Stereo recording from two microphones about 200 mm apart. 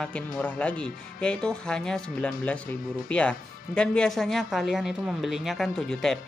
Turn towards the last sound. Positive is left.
turn(degrees=0)  # may be behind; listen again after turning